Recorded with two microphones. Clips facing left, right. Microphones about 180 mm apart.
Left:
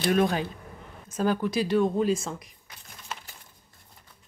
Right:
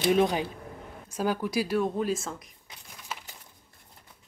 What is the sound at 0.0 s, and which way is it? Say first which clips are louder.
Speech: even; 15° right (ahead or behind).